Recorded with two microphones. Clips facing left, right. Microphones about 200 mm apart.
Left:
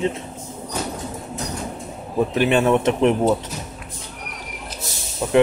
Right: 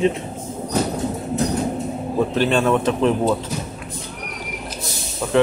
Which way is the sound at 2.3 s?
15° left (ahead or behind).